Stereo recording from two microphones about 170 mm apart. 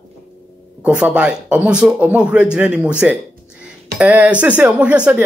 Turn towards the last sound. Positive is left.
turn(degrees=-5)  # may be behind; listen again after turning